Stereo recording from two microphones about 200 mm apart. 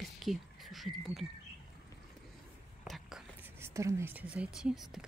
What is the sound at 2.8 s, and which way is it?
Speech, centre (ahead or behind).